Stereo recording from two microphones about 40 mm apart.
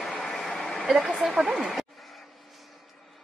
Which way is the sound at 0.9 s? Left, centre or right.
Centre.